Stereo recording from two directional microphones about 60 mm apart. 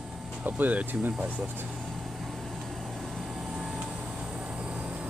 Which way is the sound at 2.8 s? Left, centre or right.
Centre.